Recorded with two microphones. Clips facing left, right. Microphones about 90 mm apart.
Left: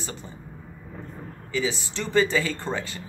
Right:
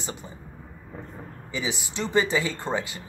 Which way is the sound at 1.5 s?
15° right (ahead or behind).